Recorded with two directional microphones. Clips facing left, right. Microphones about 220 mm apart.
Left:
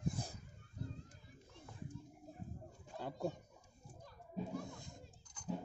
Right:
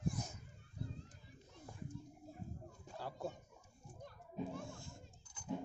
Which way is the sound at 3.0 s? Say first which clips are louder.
Left 4 dB; 20° left (ahead or behind).